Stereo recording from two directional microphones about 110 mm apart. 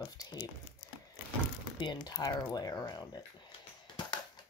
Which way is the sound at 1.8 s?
40° left (ahead or behind).